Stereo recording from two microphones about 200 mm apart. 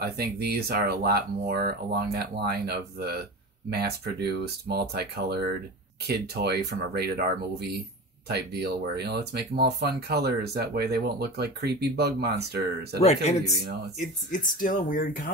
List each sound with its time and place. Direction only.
0.0 s speech: 50° right (ahead or behind)
13.0 s speech: 35° left (ahead or behind)